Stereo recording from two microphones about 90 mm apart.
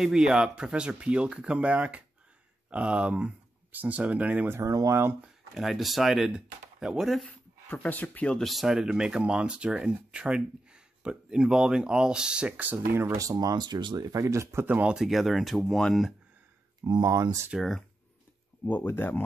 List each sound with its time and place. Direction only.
0.0 s speech: 5° right (ahead or behind)
4.6 s speech: 40° right (ahead or behind)
5.2 s speech: 5° right (ahead or behind)
7.2 s speech: 15° left (ahead or behind)
8.5 s speech: 5° right (ahead or behind); by 14.7 s 30° right (ahead or behind)
14.7 s speech: 15° right (ahead or behind)
16.8 s speech: 45° right (ahead or behind)
17.5 s speech: centre (ahead or behind)
18.6 s speech: 20° left (ahead or behind)